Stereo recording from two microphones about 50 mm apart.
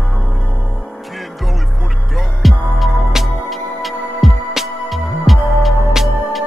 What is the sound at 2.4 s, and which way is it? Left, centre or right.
Music, centre.